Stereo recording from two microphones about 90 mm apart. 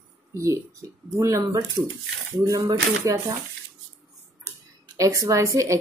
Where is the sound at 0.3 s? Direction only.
35° right (ahead or behind).